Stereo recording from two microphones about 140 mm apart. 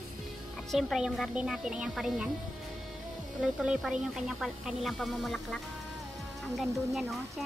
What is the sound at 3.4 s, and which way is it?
Speech, 5° right (ahead or behind).